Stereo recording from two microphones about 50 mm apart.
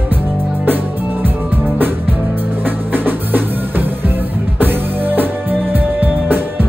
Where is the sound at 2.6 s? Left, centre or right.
Right.